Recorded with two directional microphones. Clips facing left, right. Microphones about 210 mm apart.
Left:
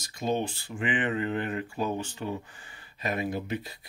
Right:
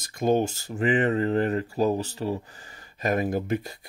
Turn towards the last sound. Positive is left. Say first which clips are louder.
# right 5 dB
turn(degrees=-45)  # may be behind; listen again after turning